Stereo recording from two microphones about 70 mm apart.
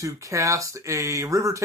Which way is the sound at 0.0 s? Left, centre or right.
Right.